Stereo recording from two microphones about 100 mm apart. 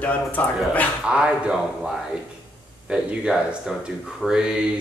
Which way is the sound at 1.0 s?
10° right (ahead or behind).